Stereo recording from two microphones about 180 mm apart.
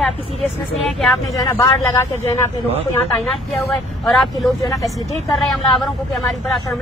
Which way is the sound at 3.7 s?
Centre (ahead or behind).